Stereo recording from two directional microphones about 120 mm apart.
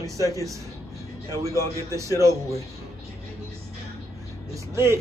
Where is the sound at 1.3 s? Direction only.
25° right (ahead or behind).